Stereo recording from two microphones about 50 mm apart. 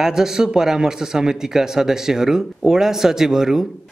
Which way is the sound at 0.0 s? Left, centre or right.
Centre.